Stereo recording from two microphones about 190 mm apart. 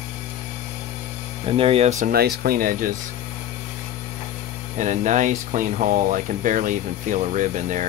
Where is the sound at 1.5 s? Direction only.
30° right (ahead or behind); by 2.9 s 45° right (ahead or behind).